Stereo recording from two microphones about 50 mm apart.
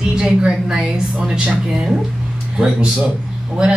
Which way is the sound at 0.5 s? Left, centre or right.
Centre.